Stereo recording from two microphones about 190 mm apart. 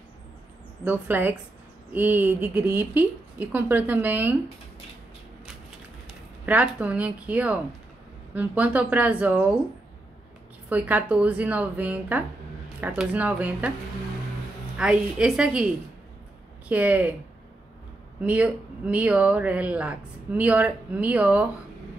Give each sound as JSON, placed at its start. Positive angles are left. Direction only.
{"t": 0.8, "sound": "speech", "side_deg": -10}
{"t": 6.4, "sound": "speech", "side_deg": -5}
{"t": 10.7, "sound": "speech", "side_deg": -5}
{"t": 14.8, "sound": "a woman's voice", "side_deg": -5}
{"t": 18.2, "sound": "speech", "side_deg": -5}